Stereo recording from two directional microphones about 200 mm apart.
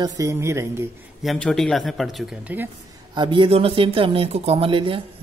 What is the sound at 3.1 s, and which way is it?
Speech, 25° right (ahead or behind).